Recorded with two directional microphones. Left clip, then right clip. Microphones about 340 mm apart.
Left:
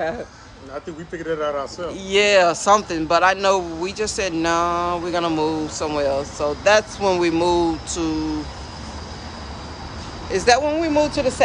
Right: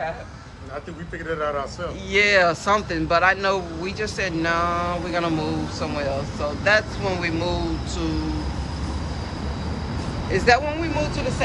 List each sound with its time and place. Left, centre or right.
1.3 s a man's voice: left
2.0 s speech: centre
10.3 s speech: centre